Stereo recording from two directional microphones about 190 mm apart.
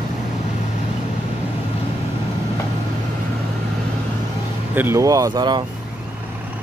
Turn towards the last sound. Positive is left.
turn(degrees=-20)  # may be behind; listen again after turning